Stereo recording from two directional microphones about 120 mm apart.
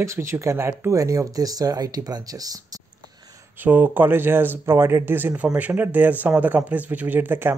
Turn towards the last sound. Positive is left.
turn(degrees=-15)  # may be behind; listen again after turning